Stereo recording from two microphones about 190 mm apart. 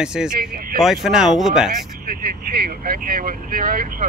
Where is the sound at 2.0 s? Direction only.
50° right (ahead or behind).